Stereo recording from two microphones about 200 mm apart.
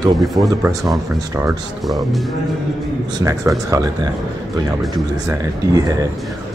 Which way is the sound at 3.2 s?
15° right (ahead or behind).